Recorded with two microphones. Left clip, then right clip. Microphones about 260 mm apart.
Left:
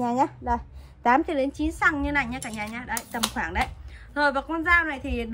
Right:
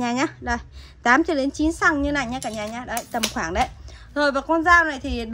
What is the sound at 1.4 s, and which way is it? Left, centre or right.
A woman's voice, centre.